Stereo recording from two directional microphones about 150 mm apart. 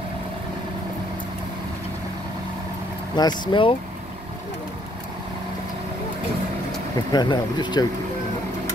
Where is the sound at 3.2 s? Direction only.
30° left (ahead or behind).